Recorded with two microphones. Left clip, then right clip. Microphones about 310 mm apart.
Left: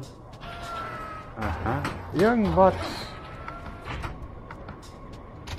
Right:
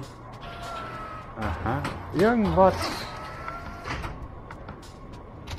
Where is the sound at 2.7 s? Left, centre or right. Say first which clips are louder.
Right 1 dB; centre.